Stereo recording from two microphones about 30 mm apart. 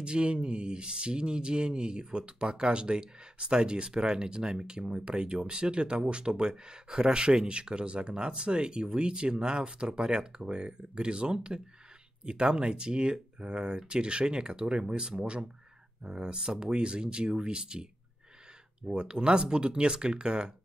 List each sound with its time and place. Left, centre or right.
0.0 s speech: right
18.9 s speech: right